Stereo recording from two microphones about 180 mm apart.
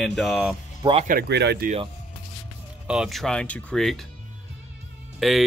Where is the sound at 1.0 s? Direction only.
60° right (ahead or behind).